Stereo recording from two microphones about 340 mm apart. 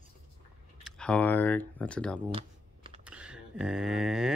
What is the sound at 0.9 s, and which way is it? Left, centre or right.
Speech, centre.